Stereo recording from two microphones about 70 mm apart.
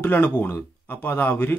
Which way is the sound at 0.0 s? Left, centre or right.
Left.